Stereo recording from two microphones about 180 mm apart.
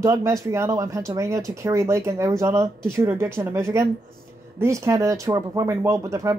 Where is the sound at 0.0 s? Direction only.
15° right (ahead or behind).